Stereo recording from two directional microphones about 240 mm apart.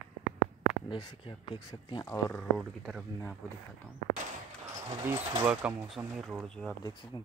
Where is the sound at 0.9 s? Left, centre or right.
Centre.